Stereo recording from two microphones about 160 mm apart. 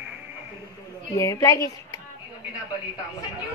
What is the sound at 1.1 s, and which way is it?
Speech, 20° left (ahead or behind).